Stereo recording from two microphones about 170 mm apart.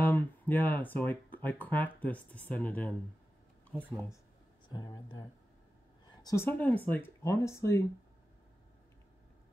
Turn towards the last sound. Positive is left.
turn(degrees=15)  # may be behind; listen again after turning